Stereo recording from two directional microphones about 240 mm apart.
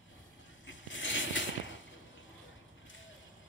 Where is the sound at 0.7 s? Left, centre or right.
Left.